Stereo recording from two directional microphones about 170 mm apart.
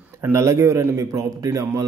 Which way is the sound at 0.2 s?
15° right (ahead or behind).